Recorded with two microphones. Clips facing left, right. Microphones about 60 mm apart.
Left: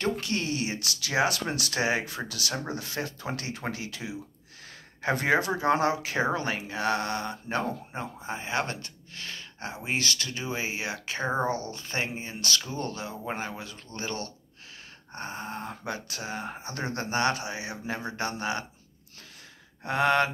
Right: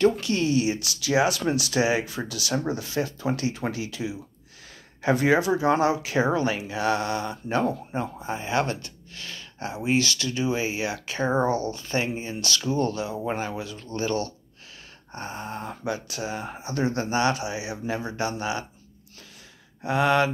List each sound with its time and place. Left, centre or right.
0.0 s speech: left
19.9 s speech: left